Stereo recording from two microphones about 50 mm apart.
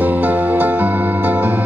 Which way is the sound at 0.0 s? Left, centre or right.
Right.